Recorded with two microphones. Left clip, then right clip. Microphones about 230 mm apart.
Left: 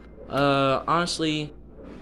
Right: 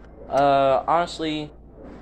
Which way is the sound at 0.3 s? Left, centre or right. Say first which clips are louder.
Right 4 dB; left.